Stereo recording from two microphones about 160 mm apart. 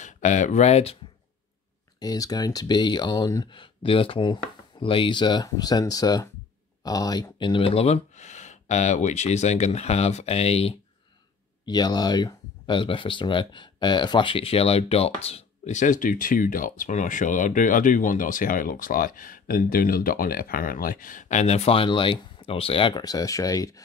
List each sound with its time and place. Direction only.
0.0 s speech: 50° left (ahead or behind)
2.0 s speech: 25° left (ahead or behind); by 10.8 s 40° left (ahead or behind)
11.6 s speech: 25° left (ahead or behind)